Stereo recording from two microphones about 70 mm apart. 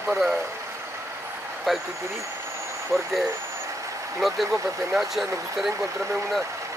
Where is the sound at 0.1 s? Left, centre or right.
Centre.